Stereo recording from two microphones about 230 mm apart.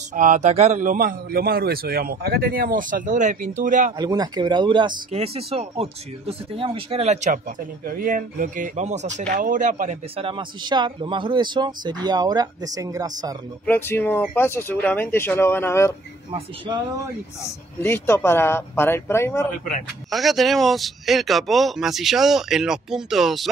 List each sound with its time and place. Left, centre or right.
0.1 s a man's voice: right
4.0 s speech: centre
13.7 s speech: centre
16.3 s speech: right
17.7 s speech: centre
20.1 s a man's voice: centre